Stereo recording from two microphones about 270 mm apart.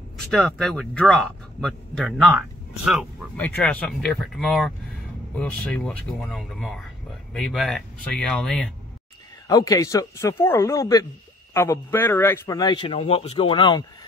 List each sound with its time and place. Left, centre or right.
0.3 s speech: centre
9.5 s a man's voice: centre